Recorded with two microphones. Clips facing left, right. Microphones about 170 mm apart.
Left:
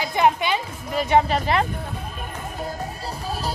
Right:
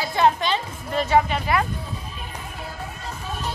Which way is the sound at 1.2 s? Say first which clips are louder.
Left 2 dB; 35° left (ahead or behind).